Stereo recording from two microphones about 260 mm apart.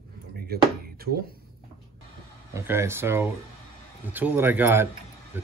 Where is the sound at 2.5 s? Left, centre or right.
Centre.